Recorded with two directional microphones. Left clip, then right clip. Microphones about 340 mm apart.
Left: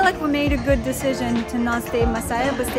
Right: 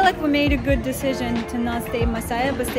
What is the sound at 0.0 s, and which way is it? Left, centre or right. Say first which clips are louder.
Speech: right 1 dB; centre.